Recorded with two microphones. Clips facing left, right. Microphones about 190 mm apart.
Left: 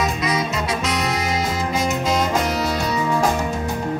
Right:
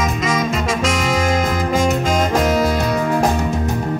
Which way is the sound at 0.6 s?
90° right.